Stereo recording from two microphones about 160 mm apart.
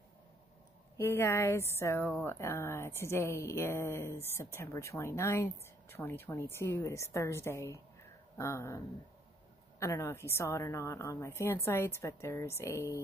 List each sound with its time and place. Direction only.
0.9 s a woman's voice: 15° left (ahead or behind)